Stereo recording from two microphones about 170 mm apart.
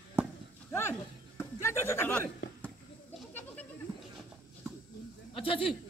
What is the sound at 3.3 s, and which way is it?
Goat, 10° left (ahead or behind).